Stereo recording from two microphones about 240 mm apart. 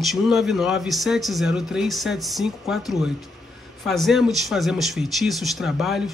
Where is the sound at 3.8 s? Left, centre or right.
Centre.